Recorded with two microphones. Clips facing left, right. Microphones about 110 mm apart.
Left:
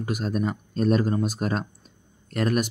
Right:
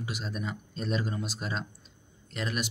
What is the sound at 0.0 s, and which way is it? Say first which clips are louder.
Speech: left 10 dB; 50° left (ahead or behind).